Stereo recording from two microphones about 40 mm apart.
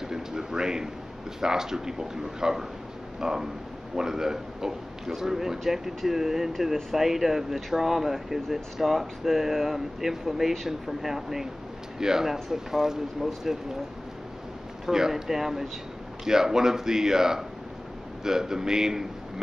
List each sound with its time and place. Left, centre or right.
0.0 s speech: centre
3.2 s a sound: centre
3.9 s speech: centre
14.9 s speech: centre